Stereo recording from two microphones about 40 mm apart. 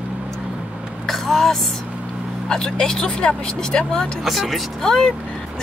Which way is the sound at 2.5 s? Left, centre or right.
Centre.